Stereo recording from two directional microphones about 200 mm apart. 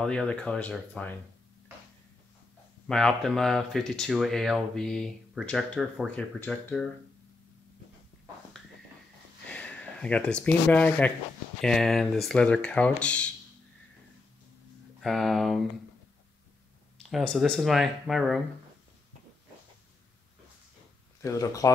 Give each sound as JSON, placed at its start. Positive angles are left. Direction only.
{"t": 0.0, "sound": "speech", "side_deg": 5}
{"t": 2.9, "sound": "speech", "side_deg": 5}
{"t": 9.5, "sound": "speech", "side_deg": 5}
{"t": 15.0, "sound": "speech", "side_deg": 0}
{"t": 17.1, "sound": "speech", "side_deg": 0}
{"t": 21.2, "sound": "speech", "side_deg": 15}